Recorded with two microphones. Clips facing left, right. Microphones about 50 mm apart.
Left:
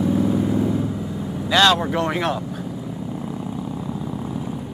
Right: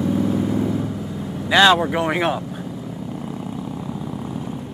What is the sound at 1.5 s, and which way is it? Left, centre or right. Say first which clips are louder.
Vehicle: right 3 dB; centre.